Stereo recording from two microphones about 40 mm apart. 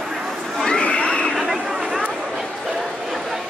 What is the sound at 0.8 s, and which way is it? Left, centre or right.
Crowd, left.